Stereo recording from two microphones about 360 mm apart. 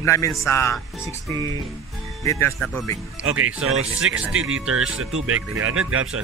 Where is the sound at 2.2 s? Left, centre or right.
Centre.